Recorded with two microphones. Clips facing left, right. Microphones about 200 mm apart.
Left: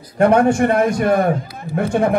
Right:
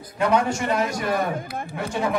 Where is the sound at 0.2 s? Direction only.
55° left (ahead or behind).